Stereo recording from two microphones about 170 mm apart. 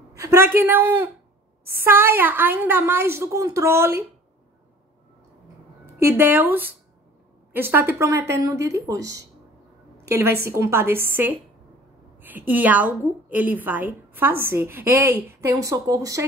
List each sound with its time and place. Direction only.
0.1 s a woman's voice: 15° right (ahead or behind)
5.9 s a woman's voice: 15° right (ahead or behind)